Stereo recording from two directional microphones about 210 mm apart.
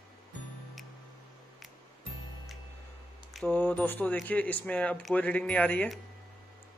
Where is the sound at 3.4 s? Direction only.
10° left (ahead or behind).